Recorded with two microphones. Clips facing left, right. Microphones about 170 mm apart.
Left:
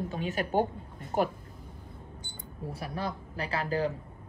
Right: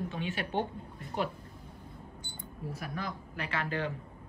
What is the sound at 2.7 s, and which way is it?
Speech, 30° left (ahead or behind).